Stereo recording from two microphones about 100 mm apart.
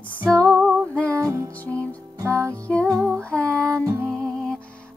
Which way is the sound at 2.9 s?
30° right (ahead or behind).